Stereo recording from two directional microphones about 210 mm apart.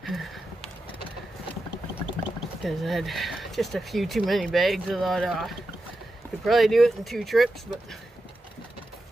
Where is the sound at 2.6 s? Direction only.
Centre (ahead or behind).